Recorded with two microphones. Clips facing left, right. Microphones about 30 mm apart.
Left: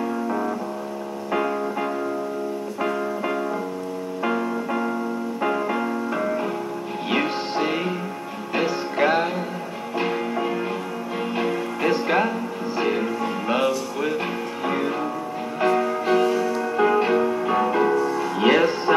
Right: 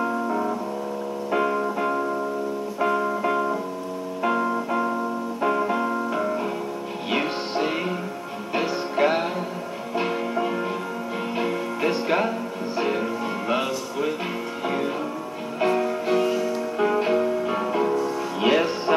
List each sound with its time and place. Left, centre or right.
1.3 s music: centre
2.9 s music: centre
15.6 s music: centre; by 18.1 s left
18.1 s music: centre